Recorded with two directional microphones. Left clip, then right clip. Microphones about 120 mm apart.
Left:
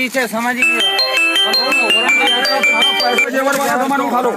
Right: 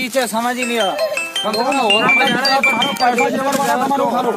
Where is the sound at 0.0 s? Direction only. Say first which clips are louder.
Left 1 dB; 10° left (ahead or behind).